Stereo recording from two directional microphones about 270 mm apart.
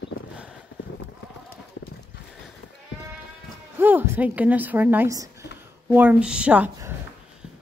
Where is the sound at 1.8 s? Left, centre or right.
Left.